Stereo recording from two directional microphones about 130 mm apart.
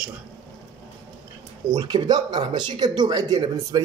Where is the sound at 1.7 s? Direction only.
35° right (ahead or behind).